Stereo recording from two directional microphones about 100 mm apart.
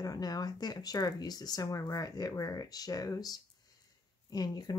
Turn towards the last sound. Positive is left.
turn(degrees=40)  # may be behind; listen again after turning